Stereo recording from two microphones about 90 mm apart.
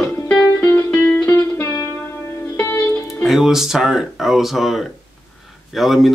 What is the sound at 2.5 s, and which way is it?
Music, 25° left (ahead or behind).